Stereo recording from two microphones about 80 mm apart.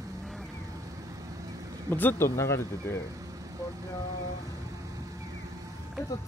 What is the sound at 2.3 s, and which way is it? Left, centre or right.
Speech, left.